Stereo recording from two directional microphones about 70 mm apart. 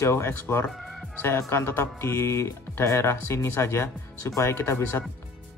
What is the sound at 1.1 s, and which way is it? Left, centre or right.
Speech, left.